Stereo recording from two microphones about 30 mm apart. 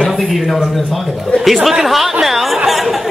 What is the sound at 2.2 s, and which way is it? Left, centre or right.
Chatter, centre.